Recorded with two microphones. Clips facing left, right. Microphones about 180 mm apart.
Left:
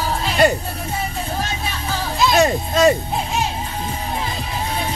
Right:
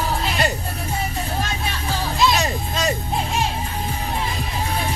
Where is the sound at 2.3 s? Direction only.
55° left (ahead or behind).